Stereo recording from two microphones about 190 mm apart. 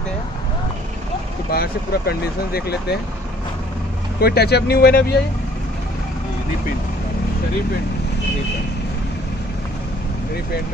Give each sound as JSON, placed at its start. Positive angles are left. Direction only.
{"t": 1.5, "sound": "speech", "side_deg": 55}
{"t": 4.2, "sound": "speech", "side_deg": 55}